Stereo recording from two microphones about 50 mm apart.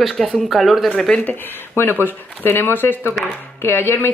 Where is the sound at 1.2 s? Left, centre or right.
Left.